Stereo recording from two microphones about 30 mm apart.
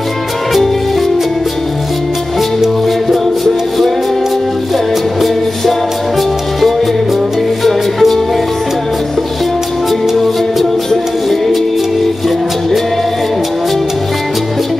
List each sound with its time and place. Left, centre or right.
7.6 s music: centre